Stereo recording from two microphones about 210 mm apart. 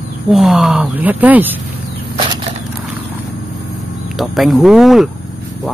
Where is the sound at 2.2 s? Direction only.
25° right (ahead or behind).